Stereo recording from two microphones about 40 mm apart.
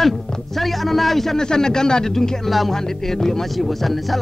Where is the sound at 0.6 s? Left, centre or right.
Centre.